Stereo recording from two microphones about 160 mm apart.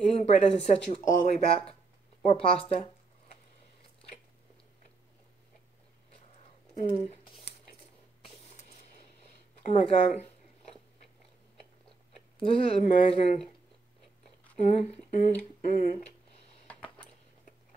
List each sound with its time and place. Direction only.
0.3 s speech: 45° left (ahead or behind)
6.7 s speech: 45° left (ahead or behind)
9.7 s a sound: 40° left (ahead or behind)
12.4 s speech: 35° left (ahead or behind)
14.6 s speech: 45° left (ahead or behind)
16.6 s a sound: 10° left (ahead or behind)